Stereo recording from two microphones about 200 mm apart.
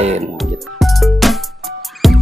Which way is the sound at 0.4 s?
Centre (ahead or behind).